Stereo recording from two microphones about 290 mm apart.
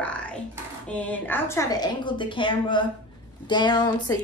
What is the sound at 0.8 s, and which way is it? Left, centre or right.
A woman's voice, centre.